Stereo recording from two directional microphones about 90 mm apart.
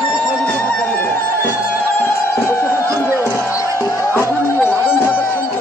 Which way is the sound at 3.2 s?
25° left (ahead or behind).